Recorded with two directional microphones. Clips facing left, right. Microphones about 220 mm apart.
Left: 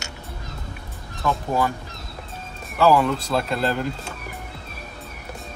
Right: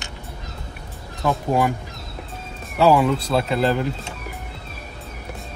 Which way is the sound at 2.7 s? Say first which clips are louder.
Right 2 dB; 15° right (ahead or behind).